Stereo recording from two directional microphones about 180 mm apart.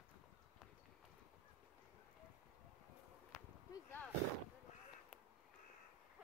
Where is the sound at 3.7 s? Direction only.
10° left (ahead or behind).